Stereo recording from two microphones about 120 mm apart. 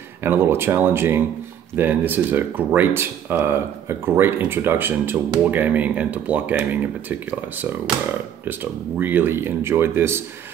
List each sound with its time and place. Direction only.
0.2 s speech: 20° right (ahead or behind)
8.5 s speech: 15° right (ahead or behind)